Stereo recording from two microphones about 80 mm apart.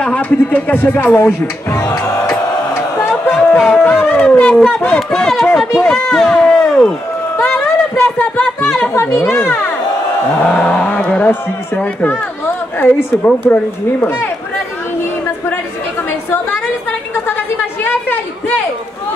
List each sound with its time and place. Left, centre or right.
0.0 s speech: centre
1.8 s music: left
2.7 s a sound: left
3.3 s music: centre
3.7 s speech: left
8.2 s speech: centre
9.1 s speech: left
10.4 s speech: centre
16.1 s a sound: left
17.8 s a sound: left